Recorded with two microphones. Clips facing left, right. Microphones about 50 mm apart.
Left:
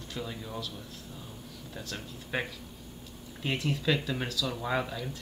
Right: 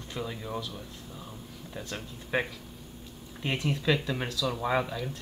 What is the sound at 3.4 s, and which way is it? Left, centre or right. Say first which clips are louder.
Speech: right 1 dB; centre.